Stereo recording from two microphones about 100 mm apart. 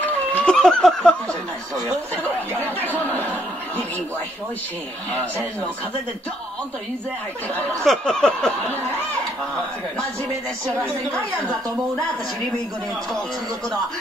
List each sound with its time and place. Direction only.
0.0 s snicker: 15° left (ahead or behind)
0.6 s snicker: 5° left (ahead or behind)
2.9 s speech: 15° left (ahead or behind)
7.8 s snicker: 5° left (ahead or behind)